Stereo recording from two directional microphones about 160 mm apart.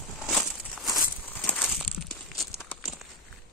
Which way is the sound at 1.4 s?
5° left (ahead or behind).